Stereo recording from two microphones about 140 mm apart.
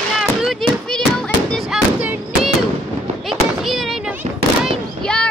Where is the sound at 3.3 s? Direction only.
Centre (ahead or behind).